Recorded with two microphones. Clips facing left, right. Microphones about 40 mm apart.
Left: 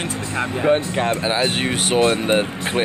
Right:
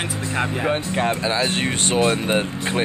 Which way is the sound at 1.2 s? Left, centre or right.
Centre.